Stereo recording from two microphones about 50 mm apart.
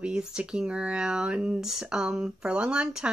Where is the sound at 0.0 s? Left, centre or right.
Centre.